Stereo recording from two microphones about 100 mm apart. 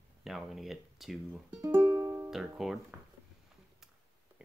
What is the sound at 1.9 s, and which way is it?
Music, 35° right (ahead or behind).